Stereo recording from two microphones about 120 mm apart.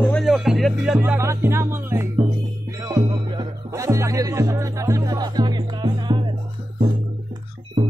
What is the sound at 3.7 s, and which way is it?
Music, 25° right (ahead or behind).